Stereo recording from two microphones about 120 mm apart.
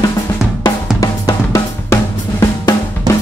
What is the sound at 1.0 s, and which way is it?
Drum, 30° left (ahead or behind).